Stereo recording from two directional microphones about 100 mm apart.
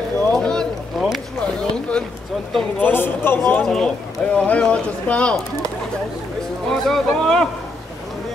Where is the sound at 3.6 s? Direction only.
5° left (ahead or behind).